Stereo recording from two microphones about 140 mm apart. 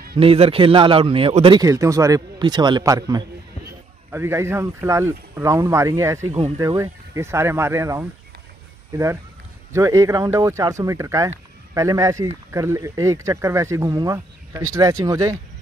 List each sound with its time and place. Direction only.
0.2 s a man's voice: 40° right (ahead or behind)
1.6 s speech: 25° right (ahead or behind)